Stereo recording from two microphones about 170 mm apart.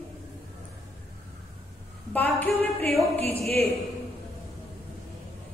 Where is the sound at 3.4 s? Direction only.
35° right (ahead or behind).